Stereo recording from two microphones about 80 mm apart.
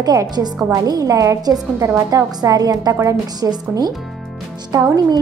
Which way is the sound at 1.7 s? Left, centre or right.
Right.